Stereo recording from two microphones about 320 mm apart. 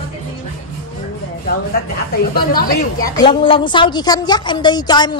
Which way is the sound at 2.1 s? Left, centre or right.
Left.